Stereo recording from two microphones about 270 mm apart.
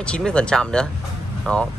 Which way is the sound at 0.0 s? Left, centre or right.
Centre.